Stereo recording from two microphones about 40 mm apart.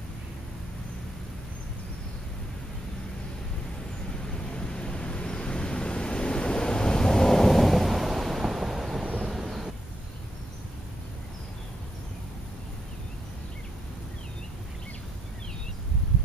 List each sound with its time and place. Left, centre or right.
4.3 s vehicle: left; by 9.0 s centre
9.3 s thunder: centre